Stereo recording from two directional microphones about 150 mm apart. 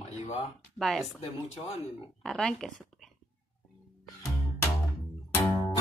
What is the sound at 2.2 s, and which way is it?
Speech, 5° left (ahead or behind).